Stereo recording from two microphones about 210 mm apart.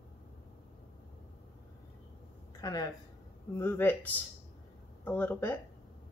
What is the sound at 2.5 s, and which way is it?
A woman's voice, 15° left (ahead or behind).